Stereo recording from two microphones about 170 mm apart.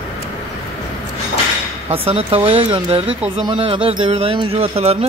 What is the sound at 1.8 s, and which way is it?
Speech, 35° right (ahead or behind).